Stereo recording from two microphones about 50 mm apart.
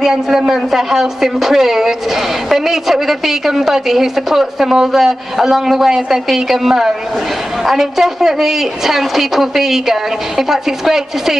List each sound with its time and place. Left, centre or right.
0.0 s a woman's voice: centre